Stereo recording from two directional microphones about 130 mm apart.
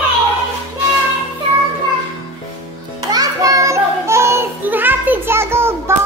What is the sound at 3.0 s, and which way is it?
Music, 30° right (ahead or behind).